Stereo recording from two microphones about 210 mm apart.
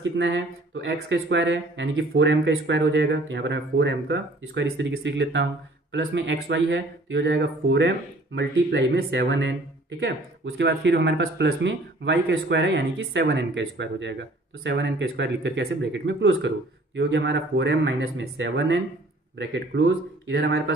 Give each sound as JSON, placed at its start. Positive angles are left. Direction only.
{"t": 0.0, "sound": "speech", "side_deg": -60}